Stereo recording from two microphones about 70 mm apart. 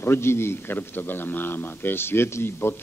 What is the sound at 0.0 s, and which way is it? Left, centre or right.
A man's voice, left.